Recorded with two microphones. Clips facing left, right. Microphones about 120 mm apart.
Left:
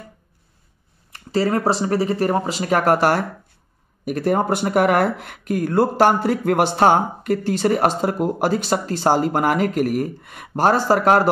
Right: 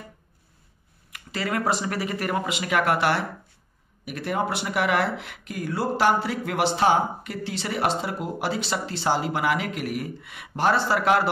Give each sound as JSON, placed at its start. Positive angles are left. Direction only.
{"t": 1.1, "sound": "speech", "side_deg": 35}